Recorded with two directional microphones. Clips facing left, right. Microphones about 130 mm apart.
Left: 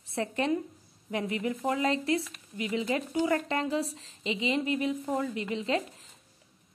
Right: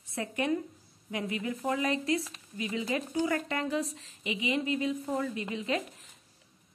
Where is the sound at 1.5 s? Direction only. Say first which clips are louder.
Left 1 dB; 25° left (ahead or behind).